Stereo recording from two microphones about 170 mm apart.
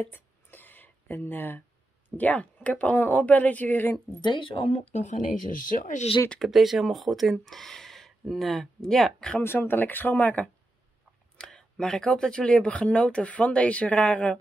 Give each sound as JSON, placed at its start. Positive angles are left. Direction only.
{"t": 0.0, "sound": "a sound", "side_deg": 10}
{"t": 2.0, "sound": "speech", "side_deg": 10}
{"t": 4.2, "sound": "speech", "side_deg": 30}
{"t": 6.2, "sound": "speech", "side_deg": 5}